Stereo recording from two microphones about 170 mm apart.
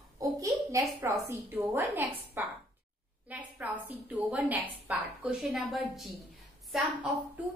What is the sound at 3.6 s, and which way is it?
A woman's voice, 10° right (ahead or behind).